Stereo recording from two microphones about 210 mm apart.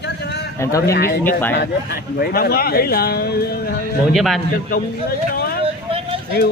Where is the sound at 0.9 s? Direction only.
45° left (ahead or behind).